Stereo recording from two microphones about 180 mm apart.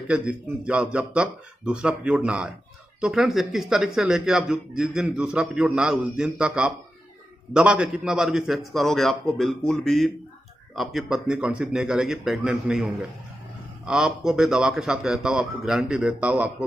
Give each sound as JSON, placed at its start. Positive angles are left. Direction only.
{"t": 0.1, "sound": "a man's voice", "side_deg": -5}